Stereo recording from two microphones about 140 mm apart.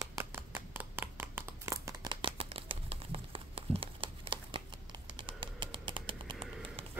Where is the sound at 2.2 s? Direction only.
40° right (ahead or behind).